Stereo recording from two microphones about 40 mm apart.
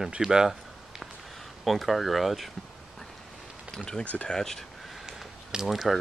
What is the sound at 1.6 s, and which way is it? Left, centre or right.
Speech, centre.